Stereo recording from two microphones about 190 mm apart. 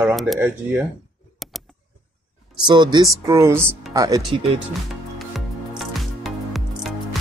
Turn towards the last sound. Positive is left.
turn(degrees=0)  # may be behind; listen again after turning